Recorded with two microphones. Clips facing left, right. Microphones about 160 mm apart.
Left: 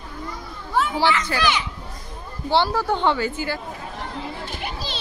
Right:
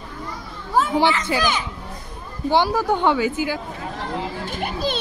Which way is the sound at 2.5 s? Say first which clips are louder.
Right 2 dB; 15° right (ahead or behind).